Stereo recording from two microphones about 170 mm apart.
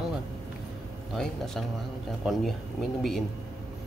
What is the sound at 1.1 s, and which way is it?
Speech, centre (ahead or behind).